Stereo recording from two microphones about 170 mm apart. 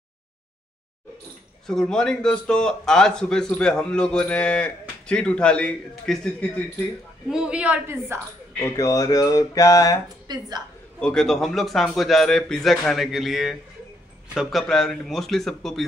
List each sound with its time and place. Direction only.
1.7 s a man's voice: 5° left (ahead or behind)
7.2 s a woman's voice: 5° right (ahead or behind)
8.5 s a sound: 20° left (ahead or behind)
10.2 s a woman's voice: 25° right (ahead or behind)
11.0 s a man's voice: 5° left (ahead or behind)